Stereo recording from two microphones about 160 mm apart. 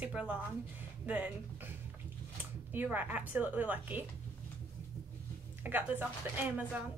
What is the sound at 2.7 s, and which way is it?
A woman's voice, 10° right (ahead or behind).